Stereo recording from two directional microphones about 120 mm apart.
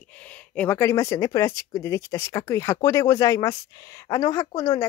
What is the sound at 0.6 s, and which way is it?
A woman's voice, 20° left (ahead or behind).